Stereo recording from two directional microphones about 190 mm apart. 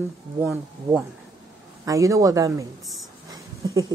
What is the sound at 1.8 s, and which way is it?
A woman's voice, 15° right (ahead or behind).